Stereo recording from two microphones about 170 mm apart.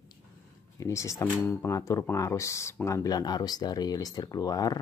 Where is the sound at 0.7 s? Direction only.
15° left (ahead or behind).